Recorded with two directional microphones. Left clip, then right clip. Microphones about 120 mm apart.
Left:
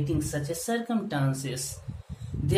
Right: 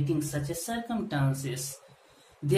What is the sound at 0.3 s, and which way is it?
Speech, 40° left (ahead or behind).